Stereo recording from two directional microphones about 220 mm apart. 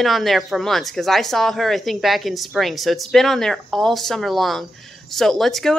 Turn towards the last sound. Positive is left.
turn(degrees=0)  # may be behind; listen again after turning